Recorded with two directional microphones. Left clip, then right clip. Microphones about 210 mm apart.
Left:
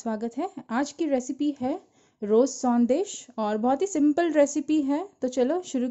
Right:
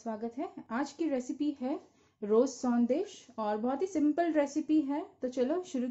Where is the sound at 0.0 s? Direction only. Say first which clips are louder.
Left 7 dB; 50° left (ahead or behind).